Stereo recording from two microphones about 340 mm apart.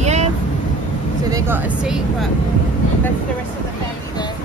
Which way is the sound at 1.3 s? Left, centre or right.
Centre.